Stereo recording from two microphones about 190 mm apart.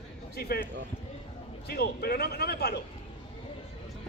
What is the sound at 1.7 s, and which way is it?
A man's voice, 55° left (ahead or behind).